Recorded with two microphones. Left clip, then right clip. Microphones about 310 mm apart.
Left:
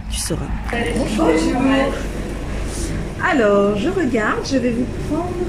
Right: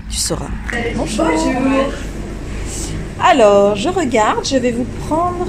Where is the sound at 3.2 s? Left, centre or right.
Centre.